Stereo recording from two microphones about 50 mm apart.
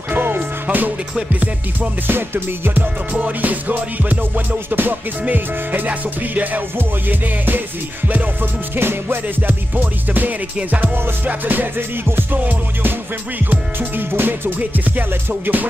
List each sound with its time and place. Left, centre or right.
0.1 s music: right
2.1 s music: right
3.1 s music: right
8.7 s music: right